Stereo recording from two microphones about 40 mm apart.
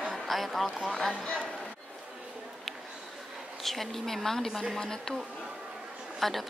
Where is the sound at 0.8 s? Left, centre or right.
Centre.